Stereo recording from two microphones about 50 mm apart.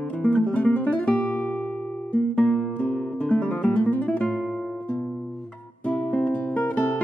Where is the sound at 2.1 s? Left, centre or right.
Left.